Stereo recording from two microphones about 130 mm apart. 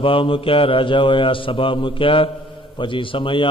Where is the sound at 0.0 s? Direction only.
45° left (ahead or behind).